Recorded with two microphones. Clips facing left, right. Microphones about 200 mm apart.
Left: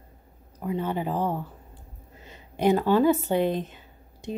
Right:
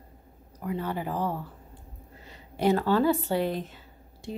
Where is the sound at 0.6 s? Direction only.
20° left (ahead or behind).